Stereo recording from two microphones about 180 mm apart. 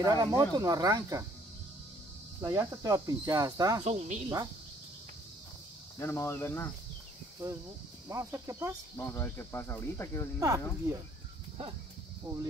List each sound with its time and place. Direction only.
0.0 s cricket: 20° right (ahead or behind)
2.4 s cricket: 20° right (ahead or behind)
3.8 s speech: 40° right (ahead or behind)
5.9 s speech: 15° left (ahead or behind)
8.1 s speech: 15° right (ahead or behind)
8.9 s speech: 15° left (ahead or behind)
10.4 s speech: 20° right (ahead or behind)